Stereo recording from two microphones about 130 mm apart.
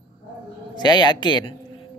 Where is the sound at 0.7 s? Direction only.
35° left (ahead or behind).